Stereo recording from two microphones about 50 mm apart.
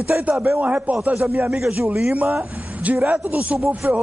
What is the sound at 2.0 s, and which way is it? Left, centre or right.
A man's voice, right.